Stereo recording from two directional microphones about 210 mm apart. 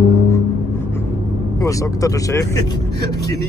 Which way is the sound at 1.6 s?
15° left (ahead or behind).